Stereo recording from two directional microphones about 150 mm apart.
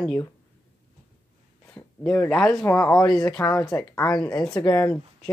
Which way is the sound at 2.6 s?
20° left (ahead or behind).